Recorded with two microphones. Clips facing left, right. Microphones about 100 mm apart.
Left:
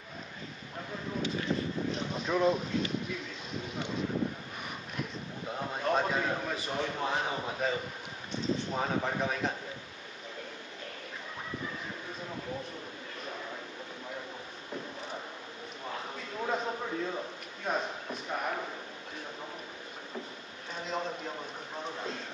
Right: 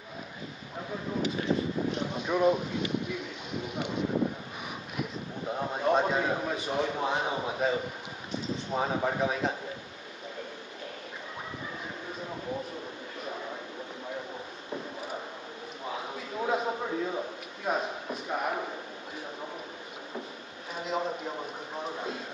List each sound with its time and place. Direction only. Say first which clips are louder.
2.2 s a man's voice: right 2 dB; 15° right (ahead or behind)
3.6 s a man's voice: right 4 dB; 15° right (ahead or behind)
5.5 s a man's voice: right 4 dB; 10° right (ahead or behind)
15.9 s a sound: right 3 dB; 10° right (ahead or behind)
17.6 s a man's voice: right 3 dB; 5° right (ahead or behind)
20.7 s a man's voice: right 4 dB; 5° right (ahead or behind)